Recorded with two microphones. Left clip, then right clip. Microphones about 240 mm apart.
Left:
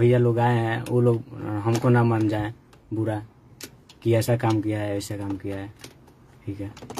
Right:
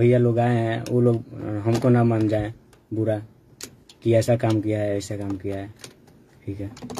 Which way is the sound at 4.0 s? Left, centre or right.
Centre.